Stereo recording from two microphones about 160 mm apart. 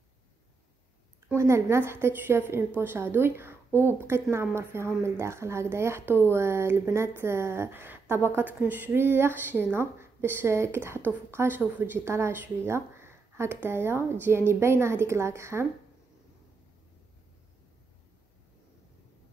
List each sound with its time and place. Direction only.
1.3 s speech: 15° right (ahead or behind)